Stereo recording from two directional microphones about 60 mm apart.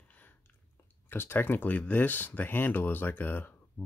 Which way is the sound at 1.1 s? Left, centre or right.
Left.